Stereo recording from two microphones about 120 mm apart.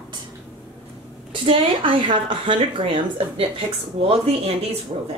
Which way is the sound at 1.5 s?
45° right (ahead or behind).